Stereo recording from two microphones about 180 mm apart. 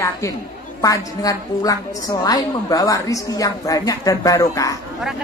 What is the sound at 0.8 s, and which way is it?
Speech, 20° left (ahead or behind).